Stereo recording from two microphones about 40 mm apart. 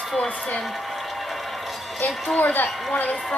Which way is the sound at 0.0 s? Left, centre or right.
Centre.